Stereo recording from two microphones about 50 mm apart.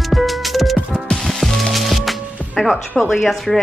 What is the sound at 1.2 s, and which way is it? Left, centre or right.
Music, centre.